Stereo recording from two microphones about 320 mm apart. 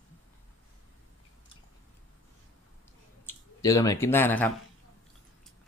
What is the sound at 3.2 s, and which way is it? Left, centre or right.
Speech, centre.